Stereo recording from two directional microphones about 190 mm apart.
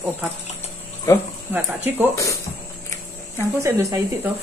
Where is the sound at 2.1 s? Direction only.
15° left (ahead or behind).